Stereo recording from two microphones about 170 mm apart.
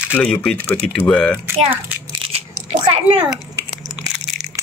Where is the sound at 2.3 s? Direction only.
35° right (ahead or behind).